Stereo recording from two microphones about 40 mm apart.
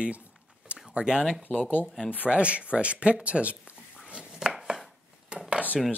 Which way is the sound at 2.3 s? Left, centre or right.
Right.